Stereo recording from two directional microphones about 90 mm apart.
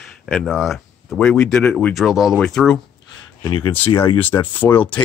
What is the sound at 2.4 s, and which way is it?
Speech, 10° left (ahead or behind).